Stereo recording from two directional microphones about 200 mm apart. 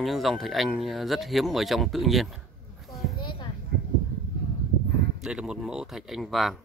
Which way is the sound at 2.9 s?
Centre (ahead or behind).